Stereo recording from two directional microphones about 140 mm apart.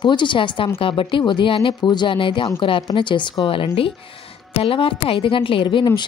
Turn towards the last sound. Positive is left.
turn(degrees=35)  # may be behind; listen again after turning